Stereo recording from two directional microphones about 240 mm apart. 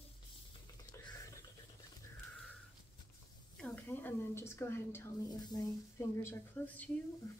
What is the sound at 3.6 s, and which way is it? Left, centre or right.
A woman's voice, centre.